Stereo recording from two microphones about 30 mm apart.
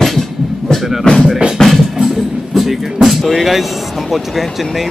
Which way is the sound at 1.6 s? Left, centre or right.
Centre.